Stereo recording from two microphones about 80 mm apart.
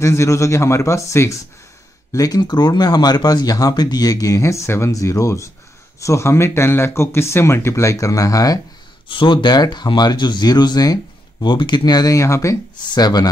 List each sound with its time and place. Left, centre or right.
0.0 s speech: left
2.1 s speech: left
9.1 s speech: left
12.9 s speech: left